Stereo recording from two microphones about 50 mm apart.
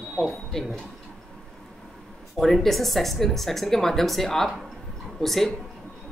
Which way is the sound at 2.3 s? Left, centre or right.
Centre.